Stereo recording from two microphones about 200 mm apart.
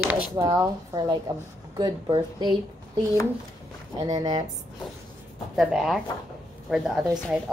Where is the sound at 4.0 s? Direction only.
20° right (ahead or behind).